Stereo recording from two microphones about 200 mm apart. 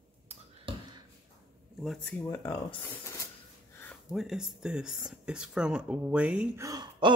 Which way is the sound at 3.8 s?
5° left (ahead or behind).